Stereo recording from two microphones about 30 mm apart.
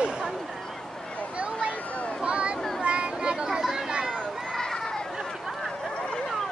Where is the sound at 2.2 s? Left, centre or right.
Right.